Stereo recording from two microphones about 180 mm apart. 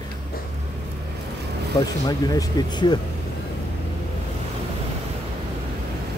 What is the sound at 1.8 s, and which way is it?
Speech, 20° left (ahead or behind).